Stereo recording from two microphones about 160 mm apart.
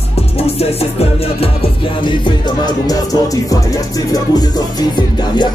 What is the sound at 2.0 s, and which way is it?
Music, 30° left (ahead or behind).